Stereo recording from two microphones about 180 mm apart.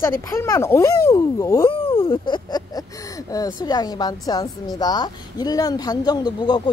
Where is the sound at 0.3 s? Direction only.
15° left (ahead or behind).